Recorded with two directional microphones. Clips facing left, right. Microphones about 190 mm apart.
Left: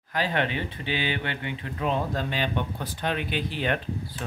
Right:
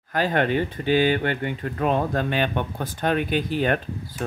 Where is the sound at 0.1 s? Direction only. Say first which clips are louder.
Right 5 dB; 45° right (ahead or behind).